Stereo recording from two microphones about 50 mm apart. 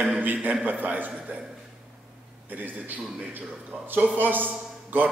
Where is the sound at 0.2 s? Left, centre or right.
Right.